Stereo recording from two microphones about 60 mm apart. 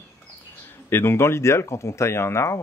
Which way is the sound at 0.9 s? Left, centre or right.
Left.